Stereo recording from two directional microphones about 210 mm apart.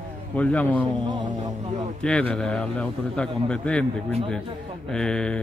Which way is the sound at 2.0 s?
5° left (ahead or behind).